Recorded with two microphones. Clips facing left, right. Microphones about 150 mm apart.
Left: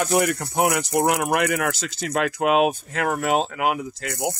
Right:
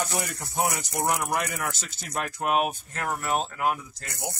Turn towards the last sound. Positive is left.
turn(degrees=75)  # may be behind; listen again after turning